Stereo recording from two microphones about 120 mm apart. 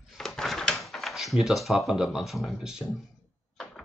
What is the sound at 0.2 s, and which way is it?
Door, 5° left (ahead or behind).